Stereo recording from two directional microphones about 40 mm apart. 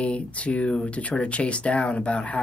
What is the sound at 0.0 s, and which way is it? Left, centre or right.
Speech, left.